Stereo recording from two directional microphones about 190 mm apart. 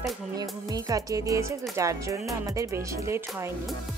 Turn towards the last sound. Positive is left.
turn(degrees=-15)  # may be behind; listen again after turning